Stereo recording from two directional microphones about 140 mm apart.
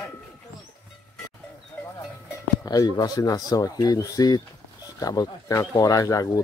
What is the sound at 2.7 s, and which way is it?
Speech, 25° left (ahead or behind).